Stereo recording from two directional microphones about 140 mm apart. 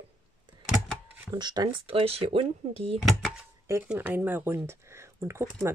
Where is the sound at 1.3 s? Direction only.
30° right (ahead or behind).